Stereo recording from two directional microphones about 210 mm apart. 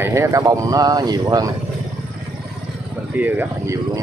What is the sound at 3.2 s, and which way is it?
Speech, 10° right (ahead or behind).